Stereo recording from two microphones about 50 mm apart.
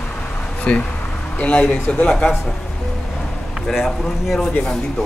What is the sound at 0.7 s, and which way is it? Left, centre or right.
Speech, centre.